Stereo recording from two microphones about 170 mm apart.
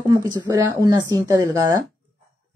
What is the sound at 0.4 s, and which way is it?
Speech, 20° right (ahead or behind).